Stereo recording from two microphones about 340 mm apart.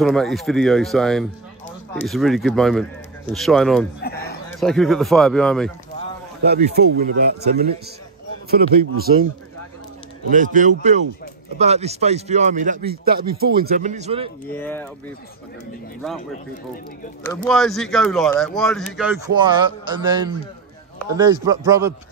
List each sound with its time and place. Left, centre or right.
0.0 s speech: centre
4.0 s a sound: left
4.5 s speech: centre
6.4 s a man's voice: right
10.3 s a man's voice: right
14.5 s speech: centre
17.5 s speech: centre
19.2 s a man's voice: centre